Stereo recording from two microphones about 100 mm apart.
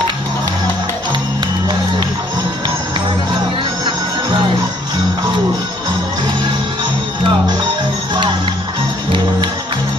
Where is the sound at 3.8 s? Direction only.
50° right (ahead or behind).